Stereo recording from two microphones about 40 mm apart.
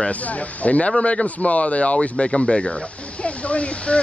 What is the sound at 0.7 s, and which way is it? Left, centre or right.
A man's voice, left.